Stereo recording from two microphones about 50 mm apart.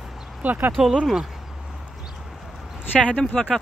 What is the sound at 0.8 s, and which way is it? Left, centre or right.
Speech, centre.